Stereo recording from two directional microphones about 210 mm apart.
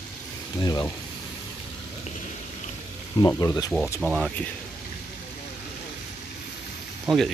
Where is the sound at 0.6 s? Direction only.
10° left (ahead or behind).